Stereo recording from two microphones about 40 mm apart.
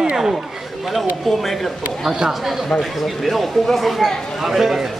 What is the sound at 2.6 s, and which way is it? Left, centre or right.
Speech, centre.